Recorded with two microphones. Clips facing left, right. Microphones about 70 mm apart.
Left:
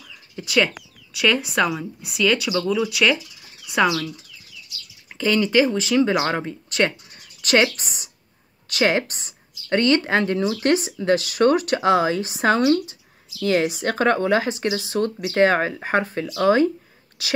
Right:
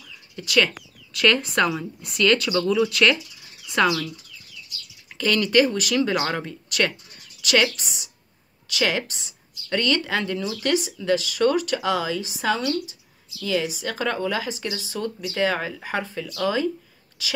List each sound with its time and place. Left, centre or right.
0.5 s speech: centre
5.1 s speech: centre
6.7 s a woman's voice: left